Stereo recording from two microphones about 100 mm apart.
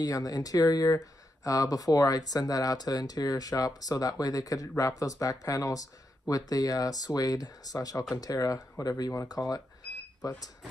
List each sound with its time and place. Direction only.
0.0 s speech: 40° left (ahead or behind)